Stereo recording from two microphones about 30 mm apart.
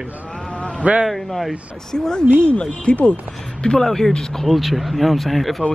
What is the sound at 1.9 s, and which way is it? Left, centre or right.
Speech, left.